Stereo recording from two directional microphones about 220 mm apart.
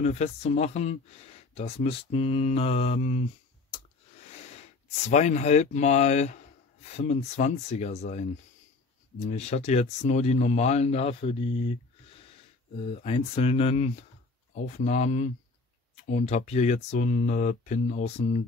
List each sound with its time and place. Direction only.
0.0 s speech: 30° left (ahead or behind)
5.0 s speech: 30° left (ahead or behind)
9.2 s speech: 30° left (ahead or behind)